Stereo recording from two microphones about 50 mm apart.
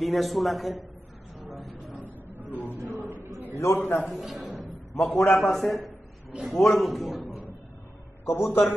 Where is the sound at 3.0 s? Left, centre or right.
Right.